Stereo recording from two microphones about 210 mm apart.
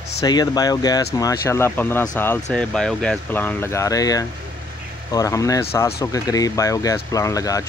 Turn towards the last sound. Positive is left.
turn(degrees=15)  # may be behind; listen again after turning